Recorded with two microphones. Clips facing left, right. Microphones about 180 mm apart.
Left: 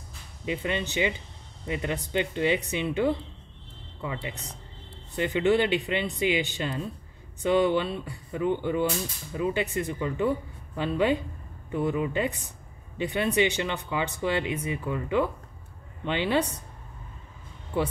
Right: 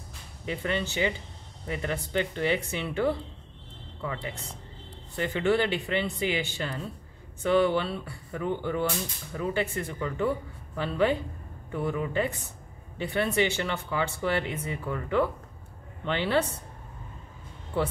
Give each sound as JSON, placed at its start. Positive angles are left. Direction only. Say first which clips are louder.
{"t": 0.5, "sound": "speech", "louder": "left 1 dB", "side_deg": 20}